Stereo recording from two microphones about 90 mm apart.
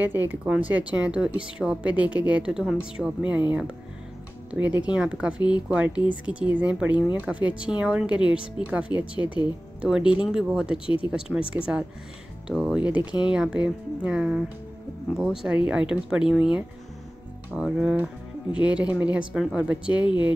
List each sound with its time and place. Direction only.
0.0 s a woman's voice: 20° right (ahead or behind)
4.5 s a woman's voice: 20° right (ahead or behind)
17.6 s a woman's voice: 10° right (ahead or behind)